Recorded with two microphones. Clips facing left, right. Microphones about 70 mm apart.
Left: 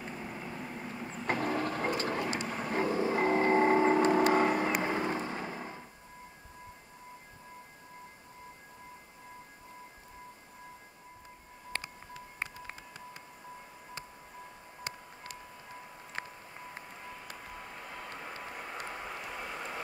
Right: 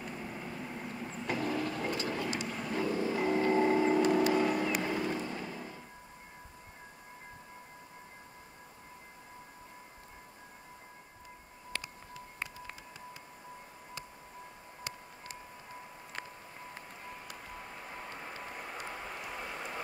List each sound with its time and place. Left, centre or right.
0.1 s vehicle: centre
1.2 s vehicle: left
2.1 s vehicle: left
2.9 s music: left
3.2 s vehicle: left
4.5 s a sound: left
11.7 s wind chime: left
16.2 s a sound: left
17.5 s vehicle: centre
17.8 s vehicle: centre
18.2 s vehicle: centre
18.9 s a sound: centre